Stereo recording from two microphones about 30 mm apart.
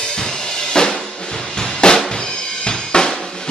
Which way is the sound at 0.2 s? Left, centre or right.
Left.